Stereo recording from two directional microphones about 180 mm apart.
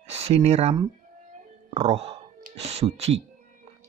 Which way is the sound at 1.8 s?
35° right (ahead or behind).